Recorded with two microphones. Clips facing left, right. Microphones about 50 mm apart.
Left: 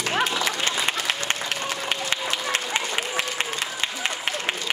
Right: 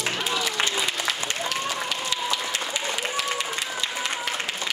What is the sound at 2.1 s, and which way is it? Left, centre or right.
Applause, left.